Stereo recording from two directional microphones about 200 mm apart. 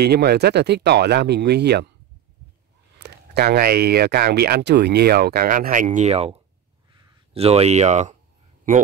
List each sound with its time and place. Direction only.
0.0 s speech: 50° right (ahead or behind)
3.0 s speech: 50° right (ahead or behind); by 6.4 s 30° right (ahead or behind)
6.9 s a sound: 30° right (ahead or behind)